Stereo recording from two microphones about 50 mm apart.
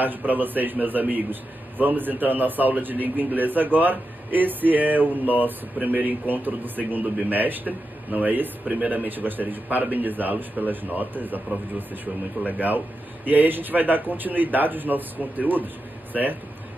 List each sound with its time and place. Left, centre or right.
0.0 s a man's voice: right